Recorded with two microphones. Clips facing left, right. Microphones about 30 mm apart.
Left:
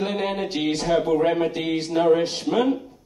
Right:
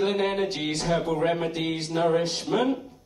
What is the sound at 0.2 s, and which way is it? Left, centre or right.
Speech, centre.